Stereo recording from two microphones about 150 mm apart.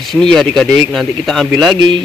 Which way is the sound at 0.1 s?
5° left (ahead or behind).